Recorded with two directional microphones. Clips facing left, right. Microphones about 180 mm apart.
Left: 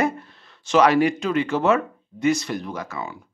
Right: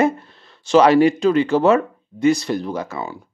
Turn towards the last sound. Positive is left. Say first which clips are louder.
# right 5 dB
turn(degrees=-30)  # may be behind; listen again after turning